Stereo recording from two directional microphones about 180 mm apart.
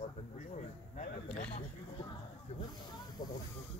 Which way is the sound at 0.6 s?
40° left (ahead or behind).